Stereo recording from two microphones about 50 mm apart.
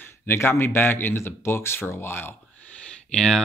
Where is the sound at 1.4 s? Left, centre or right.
Left.